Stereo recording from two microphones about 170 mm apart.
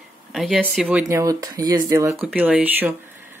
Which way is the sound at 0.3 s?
Centre (ahead or behind).